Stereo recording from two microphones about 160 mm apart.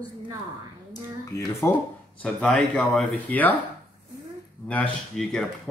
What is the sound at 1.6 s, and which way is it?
Speech, 15° left (ahead or behind).